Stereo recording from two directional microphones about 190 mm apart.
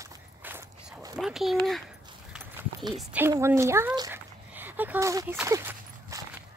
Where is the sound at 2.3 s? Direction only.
5° right (ahead or behind).